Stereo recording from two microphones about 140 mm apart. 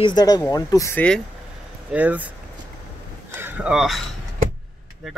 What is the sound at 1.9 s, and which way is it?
Speech, 10° right (ahead or behind).